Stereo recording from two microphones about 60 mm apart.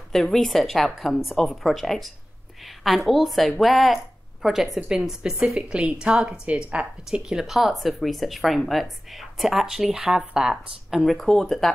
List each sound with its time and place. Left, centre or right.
0.1 s a woman's voice: centre